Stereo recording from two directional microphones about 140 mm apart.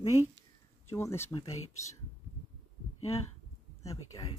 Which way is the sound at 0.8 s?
15° left (ahead or behind).